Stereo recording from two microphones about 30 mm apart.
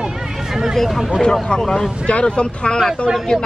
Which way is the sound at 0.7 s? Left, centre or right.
Centre.